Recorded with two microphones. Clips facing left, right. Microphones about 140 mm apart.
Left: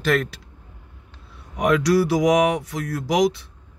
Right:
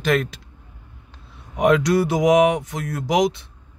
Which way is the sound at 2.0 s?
20° right (ahead or behind).